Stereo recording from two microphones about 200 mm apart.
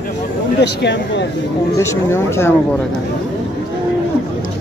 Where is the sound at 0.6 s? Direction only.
60° left (ahead or behind).